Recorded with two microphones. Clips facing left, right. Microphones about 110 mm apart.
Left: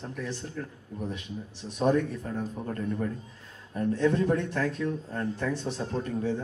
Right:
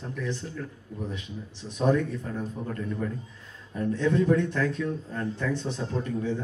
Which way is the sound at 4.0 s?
40° left (ahead or behind).